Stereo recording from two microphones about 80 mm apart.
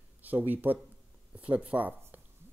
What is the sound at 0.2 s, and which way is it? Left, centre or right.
Speech, right.